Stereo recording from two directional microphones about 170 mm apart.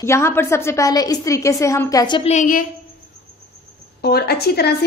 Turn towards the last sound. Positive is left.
turn(degrees=70)  # may be behind; listen again after turning